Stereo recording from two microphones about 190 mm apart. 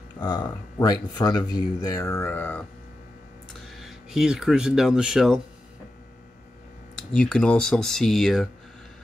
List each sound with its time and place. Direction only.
0.2 s speech: 20° left (ahead or behind)
3.6 s speech: centre (ahead or behind)
7.0 s speech: 5° left (ahead or behind)